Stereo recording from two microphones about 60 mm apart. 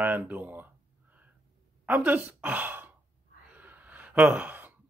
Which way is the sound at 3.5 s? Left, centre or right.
Right.